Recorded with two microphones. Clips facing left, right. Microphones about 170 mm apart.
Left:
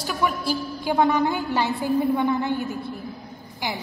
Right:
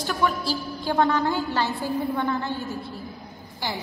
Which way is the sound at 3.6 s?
15° left (ahead or behind).